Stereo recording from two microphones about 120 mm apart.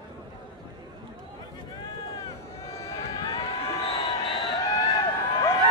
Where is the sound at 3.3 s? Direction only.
55° left (ahead or behind).